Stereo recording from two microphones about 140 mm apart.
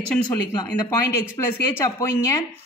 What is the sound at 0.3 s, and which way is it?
Speech, 25° left (ahead or behind).